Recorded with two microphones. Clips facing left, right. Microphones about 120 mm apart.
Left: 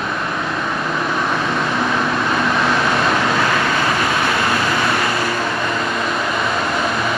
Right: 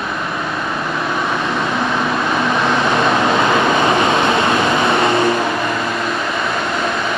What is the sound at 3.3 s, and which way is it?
Vehicle, 20° right (ahead or behind).